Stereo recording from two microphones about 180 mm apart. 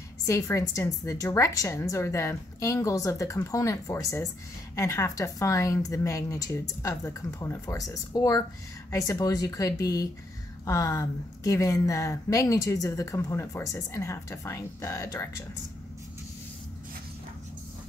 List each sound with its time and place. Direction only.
0.3 s a woman's voice: 20° left (ahead or behind)